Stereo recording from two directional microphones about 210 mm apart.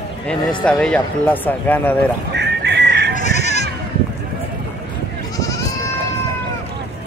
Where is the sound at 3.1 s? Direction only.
35° left (ahead or behind).